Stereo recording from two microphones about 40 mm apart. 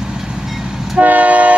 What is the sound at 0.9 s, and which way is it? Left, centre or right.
Train, right.